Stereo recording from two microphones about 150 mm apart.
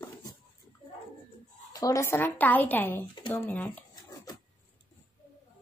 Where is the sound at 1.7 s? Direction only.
20° left (ahead or behind).